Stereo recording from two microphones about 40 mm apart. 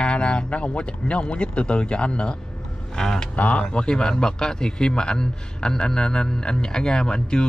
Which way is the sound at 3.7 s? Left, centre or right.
Centre.